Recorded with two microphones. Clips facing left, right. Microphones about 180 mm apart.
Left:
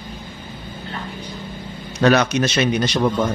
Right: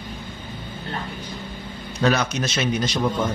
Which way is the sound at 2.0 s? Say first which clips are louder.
Left 6 dB; 70° left (ahead or behind).